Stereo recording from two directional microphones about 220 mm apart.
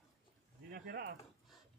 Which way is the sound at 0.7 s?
45° right (ahead or behind).